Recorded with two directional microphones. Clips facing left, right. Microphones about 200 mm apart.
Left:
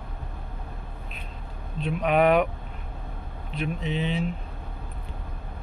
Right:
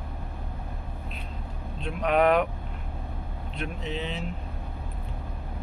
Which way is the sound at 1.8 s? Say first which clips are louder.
Left 1 dB; 5° left (ahead or behind).